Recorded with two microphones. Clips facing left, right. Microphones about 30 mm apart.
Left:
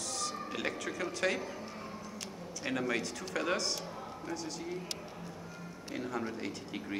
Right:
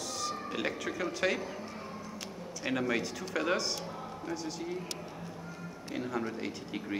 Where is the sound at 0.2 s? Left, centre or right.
Centre.